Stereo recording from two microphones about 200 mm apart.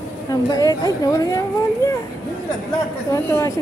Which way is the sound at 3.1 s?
15° left (ahead or behind).